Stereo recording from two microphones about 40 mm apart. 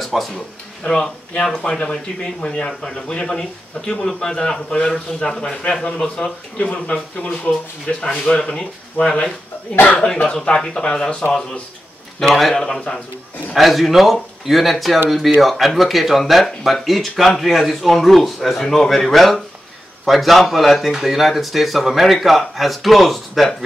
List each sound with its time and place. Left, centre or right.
0.0 s a sound: centre
0.8 s a man's voice: left
4.4 s a man's voice: left
12.2 s a man's voice: centre
13.6 s speech: centre